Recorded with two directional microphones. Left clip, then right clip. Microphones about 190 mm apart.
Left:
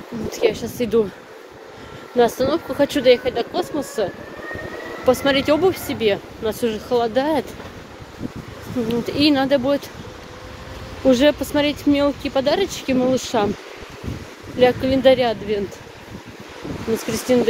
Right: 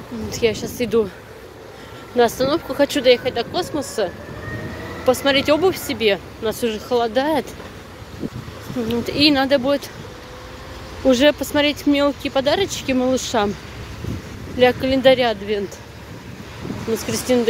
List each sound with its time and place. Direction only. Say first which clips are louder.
0.3 s speech: even; 15° left (ahead or behind)
2.1 s speech: even; 10° left (ahead or behind)
5.0 s speech: even; 20° left (ahead or behind)
8.8 s speech: right 2 dB; 15° left (ahead or behind)
11.1 s speech: even; 15° left (ahead or behind)
14.6 s speech: even; 15° left (ahead or behind)
17.0 s speech: even; 15° left (ahead or behind)